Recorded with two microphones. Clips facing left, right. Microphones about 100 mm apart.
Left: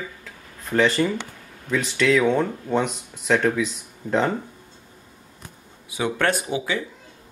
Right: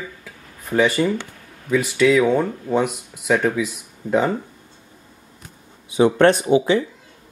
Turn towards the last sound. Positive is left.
turn(degrees=-30)  # may be behind; listen again after turning